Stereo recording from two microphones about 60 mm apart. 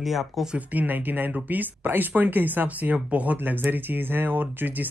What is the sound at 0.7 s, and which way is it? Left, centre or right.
Speech, right.